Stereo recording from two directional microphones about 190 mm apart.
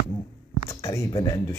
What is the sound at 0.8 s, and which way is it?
Speech, 15° left (ahead or behind).